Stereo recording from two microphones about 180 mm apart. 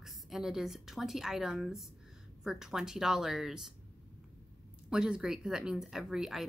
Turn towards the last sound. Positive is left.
turn(degrees=0)  # may be behind; listen again after turning